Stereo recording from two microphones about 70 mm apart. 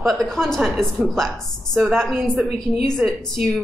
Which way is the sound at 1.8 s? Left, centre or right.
Centre.